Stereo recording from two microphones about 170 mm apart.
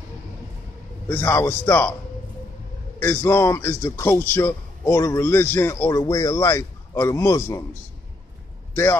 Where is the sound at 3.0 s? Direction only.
15° left (ahead or behind).